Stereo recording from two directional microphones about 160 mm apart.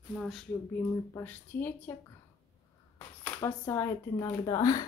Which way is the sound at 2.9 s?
15° left (ahead or behind).